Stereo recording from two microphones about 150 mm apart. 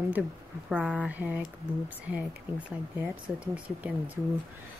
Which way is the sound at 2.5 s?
10° right (ahead or behind).